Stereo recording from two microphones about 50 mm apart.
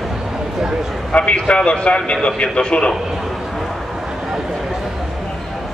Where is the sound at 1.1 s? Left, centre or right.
Left.